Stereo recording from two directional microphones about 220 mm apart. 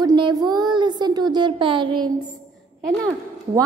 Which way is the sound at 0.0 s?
20° right (ahead or behind).